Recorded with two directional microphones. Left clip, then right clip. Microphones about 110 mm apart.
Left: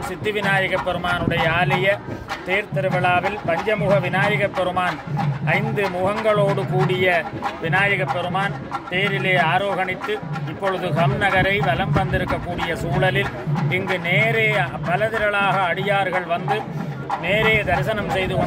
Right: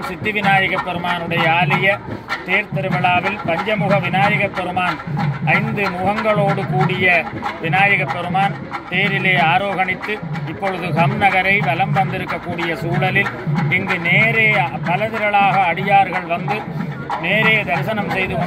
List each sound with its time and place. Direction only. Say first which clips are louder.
0.2 s speech: right 5 dB; 35° left (ahead or behind)
13.0 s speech: right 3 dB; 40° left (ahead or behind)